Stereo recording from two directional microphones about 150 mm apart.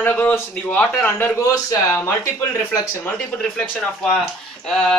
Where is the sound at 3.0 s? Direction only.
10° left (ahead or behind).